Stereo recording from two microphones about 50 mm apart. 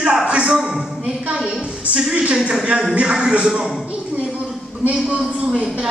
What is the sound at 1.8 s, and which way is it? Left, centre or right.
Speech, right.